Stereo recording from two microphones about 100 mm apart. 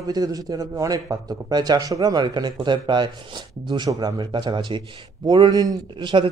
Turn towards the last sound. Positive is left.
turn(degrees=-50)  # may be behind; listen again after turning